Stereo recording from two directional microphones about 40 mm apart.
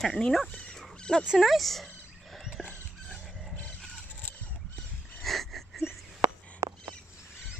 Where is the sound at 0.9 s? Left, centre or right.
Centre.